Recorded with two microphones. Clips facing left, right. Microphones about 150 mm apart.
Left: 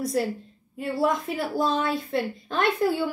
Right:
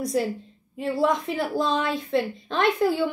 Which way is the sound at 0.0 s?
Centre (ahead or behind).